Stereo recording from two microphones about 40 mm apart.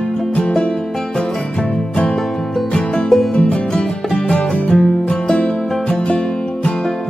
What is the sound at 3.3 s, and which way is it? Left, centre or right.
Music, left.